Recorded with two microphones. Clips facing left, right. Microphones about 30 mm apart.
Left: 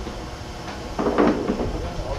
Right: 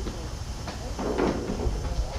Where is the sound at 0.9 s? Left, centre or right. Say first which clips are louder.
Left 8 dB; left.